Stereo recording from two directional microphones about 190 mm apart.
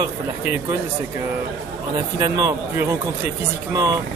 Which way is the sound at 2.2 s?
20° right (ahead or behind).